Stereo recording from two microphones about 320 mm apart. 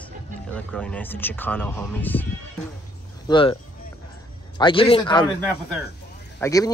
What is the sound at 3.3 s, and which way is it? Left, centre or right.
Speech, centre.